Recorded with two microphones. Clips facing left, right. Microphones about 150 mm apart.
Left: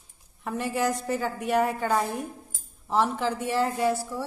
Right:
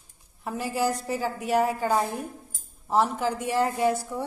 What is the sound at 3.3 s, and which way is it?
Speech, 10° right (ahead or behind).